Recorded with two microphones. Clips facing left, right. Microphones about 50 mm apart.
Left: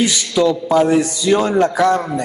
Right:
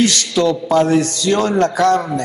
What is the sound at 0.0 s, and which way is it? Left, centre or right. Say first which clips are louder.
A man's voice: even; centre.